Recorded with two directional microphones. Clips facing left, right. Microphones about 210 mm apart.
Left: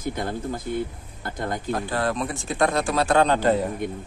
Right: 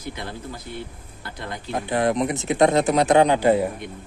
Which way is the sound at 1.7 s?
20° right (ahead or behind).